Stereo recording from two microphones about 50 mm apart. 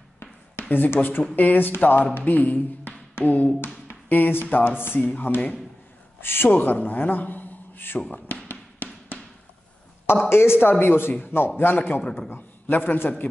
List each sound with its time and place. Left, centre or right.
0.2 s a sound: left
0.8 s speech: left
6.2 s a woman's voice: left
10.3 s speech: left
12.0 s a man's voice: left
12.3 s a man's voice: left